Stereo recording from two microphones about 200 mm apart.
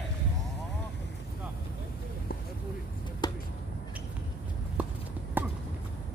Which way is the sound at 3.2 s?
20° left (ahead or behind).